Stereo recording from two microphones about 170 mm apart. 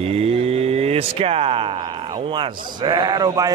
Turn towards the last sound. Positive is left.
turn(degrees=-20)  # may be behind; listen again after turning